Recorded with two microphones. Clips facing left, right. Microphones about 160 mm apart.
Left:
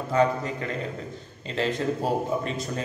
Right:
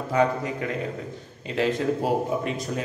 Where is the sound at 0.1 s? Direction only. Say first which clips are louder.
Even; 10° right (ahead or behind).